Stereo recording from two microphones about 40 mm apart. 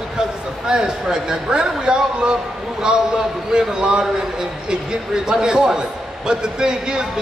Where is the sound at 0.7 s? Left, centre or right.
Centre.